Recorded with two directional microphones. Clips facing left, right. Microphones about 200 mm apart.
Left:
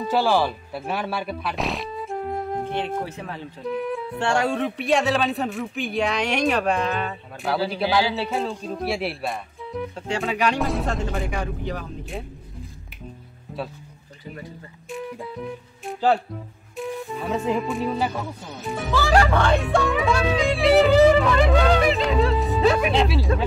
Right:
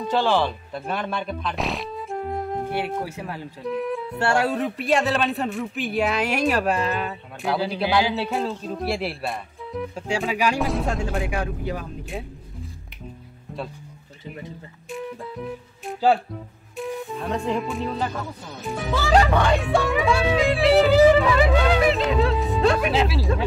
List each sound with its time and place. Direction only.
0.0 s speech: 5° left (ahead or behind)
7.7 s speech: 15° right (ahead or behind)
8.2 s speech: centre (ahead or behind)
13.5 s music: centre (ahead or behind)
15.0 s speech: centre (ahead or behind)
19.0 s speech: 15° right (ahead or behind)
19.6 s speech: centre (ahead or behind)